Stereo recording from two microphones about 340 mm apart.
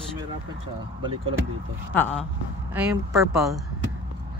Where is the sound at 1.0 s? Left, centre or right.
Centre.